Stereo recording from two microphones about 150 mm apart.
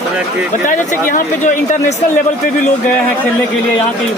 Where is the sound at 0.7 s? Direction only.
60° left (ahead or behind).